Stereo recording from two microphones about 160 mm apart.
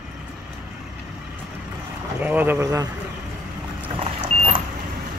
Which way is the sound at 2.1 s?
10° right (ahead or behind).